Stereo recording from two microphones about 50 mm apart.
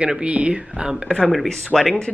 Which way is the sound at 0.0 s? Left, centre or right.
Right.